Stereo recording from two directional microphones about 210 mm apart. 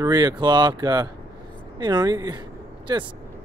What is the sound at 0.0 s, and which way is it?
Speech, 20° right (ahead or behind).